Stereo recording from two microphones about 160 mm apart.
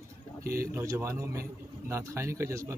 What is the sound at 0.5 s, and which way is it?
A man's voice, 15° right (ahead or behind).